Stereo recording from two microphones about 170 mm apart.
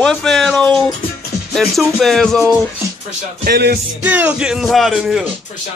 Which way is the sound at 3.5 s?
70° right (ahead or behind).